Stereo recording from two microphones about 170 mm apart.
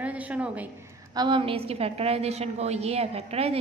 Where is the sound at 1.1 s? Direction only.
30° right (ahead or behind).